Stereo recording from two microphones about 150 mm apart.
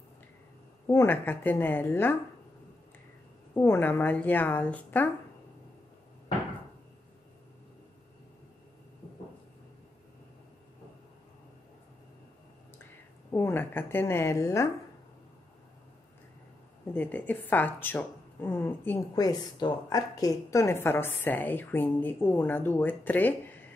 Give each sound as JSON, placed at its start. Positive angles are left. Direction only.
{"t": 0.8, "sound": "a woman's voice", "side_deg": 15}
{"t": 3.5, "sound": "a woman's voice", "side_deg": 15}
{"t": 13.3, "sound": "a woman's voice", "side_deg": 15}
{"t": 16.9, "sound": "a woman's voice", "side_deg": 10}
{"t": 19.1, "sound": "a woman's voice", "side_deg": 25}